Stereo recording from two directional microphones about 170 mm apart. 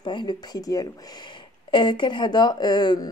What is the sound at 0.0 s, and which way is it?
Speech, 25° left (ahead or behind).